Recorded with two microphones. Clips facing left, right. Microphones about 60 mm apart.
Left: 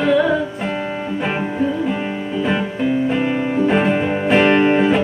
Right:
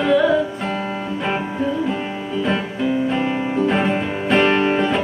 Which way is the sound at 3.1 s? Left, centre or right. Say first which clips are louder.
Left 2 dB; centre.